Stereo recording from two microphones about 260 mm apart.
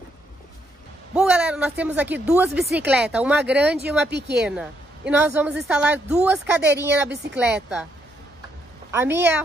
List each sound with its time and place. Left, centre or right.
1.1 s a woman's voice: centre
4.1 s a woman's voice: right
4.5 s a woman's voice: centre
8.9 s speech: centre